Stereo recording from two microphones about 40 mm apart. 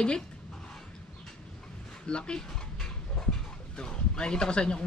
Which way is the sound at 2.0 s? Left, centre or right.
Left.